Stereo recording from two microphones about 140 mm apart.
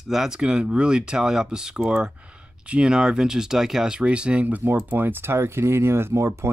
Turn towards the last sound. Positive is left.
turn(degrees=-20)  # may be behind; listen again after turning